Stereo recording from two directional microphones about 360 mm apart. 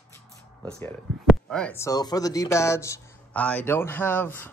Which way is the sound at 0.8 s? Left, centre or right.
Centre.